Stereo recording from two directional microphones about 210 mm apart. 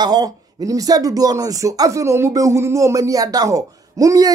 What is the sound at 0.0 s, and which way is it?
Speech, 20° right (ahead or behind).